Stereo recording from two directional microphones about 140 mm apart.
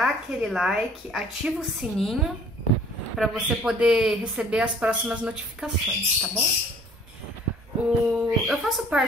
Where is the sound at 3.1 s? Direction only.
Centre (ahead or behind).